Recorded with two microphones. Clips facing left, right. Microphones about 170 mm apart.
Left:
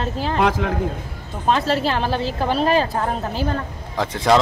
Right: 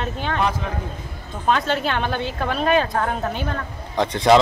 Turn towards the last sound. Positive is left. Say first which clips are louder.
# right 2 dB
turn(degrees=0)  # may be behind; listen again after turning